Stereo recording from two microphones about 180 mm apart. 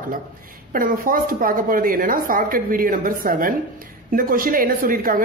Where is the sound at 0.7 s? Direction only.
50° right (ahead or behind).